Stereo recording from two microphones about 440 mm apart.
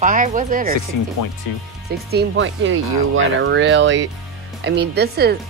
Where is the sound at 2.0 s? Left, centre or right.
Right.